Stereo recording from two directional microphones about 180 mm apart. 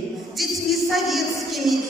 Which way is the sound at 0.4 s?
Centre (ahead or behind).